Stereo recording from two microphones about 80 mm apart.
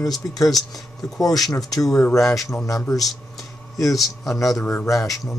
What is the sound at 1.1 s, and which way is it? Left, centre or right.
A man's voice, left.